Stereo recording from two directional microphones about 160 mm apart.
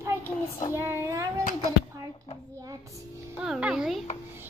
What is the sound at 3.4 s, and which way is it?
Speech, 5° right (ahead or behind).